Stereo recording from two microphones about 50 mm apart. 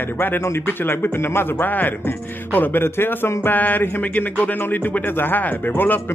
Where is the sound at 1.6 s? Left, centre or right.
Left.